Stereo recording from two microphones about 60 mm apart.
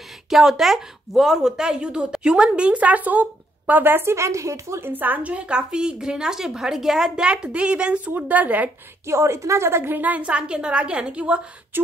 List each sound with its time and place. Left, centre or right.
0.3 s a woman's voice: centre; by 4.1 s right
4.1 s speech: right
4.7 s a woman's voice: right
9.0 s a woman's voice: right; by 11.4 s centre
11.7 s a sound: right